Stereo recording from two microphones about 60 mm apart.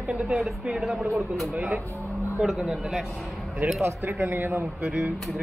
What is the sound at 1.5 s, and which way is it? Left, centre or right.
Speech, right.